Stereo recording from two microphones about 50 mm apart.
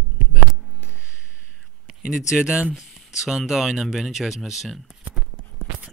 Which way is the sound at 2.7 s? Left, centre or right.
Centre.